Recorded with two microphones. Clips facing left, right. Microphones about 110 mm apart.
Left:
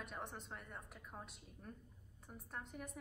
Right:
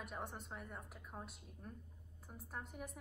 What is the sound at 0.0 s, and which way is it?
A woman's voice, centre (ahead or behind).